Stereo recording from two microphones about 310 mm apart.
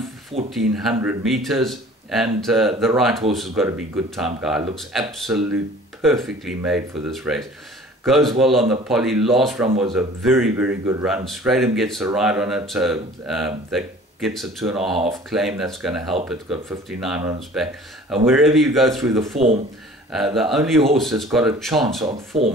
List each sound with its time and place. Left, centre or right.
0.6 s speech: centre
19.3 s speech: centre
20.1 s speech: centre
22.3 s speech: centre